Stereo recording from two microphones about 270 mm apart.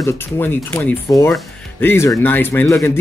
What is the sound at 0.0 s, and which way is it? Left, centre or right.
Speech, centre.